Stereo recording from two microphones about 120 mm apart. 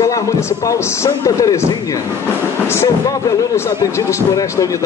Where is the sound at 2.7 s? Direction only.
25° left (ahead or behind).